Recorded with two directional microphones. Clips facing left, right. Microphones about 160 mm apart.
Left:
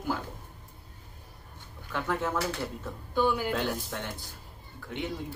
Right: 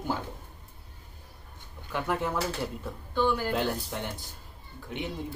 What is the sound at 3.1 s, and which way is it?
Speech, 10° left (ahead or behind).